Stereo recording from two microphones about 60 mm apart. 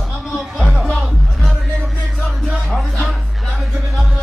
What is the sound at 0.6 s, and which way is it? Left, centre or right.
Music, centre.